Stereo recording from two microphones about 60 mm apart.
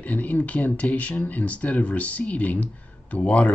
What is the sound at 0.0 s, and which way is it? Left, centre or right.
Speech, left.